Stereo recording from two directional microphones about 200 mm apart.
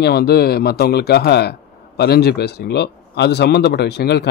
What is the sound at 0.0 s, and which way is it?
Speech, 50° left (ahead or behind).